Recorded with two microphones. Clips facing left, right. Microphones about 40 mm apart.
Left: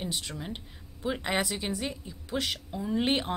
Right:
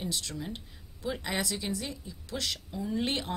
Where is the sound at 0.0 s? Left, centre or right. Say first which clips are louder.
Even; left.